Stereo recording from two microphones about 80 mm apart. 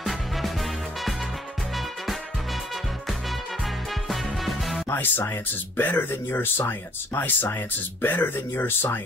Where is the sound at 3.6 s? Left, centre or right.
Centre.